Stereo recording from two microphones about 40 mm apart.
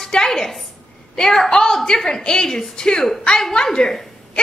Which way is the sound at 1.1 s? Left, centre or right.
Centre.